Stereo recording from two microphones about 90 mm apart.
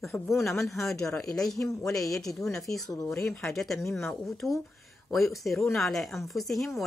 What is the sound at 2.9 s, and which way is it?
Speech, 35° left (ahead or behind).